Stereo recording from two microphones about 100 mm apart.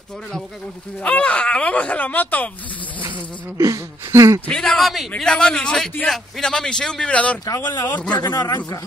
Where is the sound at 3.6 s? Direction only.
30° right (ahead or behind).